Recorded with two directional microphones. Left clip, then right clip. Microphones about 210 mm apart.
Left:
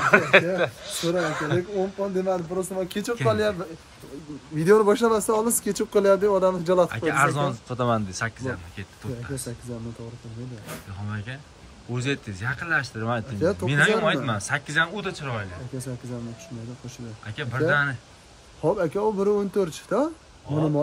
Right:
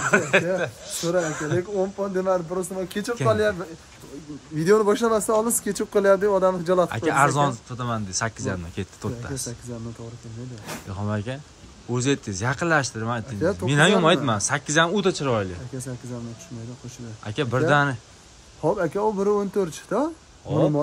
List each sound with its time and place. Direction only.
0.0 s speech: 15° right (ahead or behind)
2.8 s speech: centre (ahead or behind)
8.4 s a man's voice: 20° right (ahead or behind)
11.1 s speech: 15° right (ahead or behind)
13.7 s speech: 20° right (ahead or behind)
15.0 s a man's voice: 20° right (ahead or behind)
17.3 s speech: 15° right (ahead or behind)
18.6 s speech: centre (ahead or behind)